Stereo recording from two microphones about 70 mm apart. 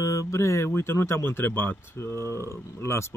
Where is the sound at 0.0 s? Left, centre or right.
Left.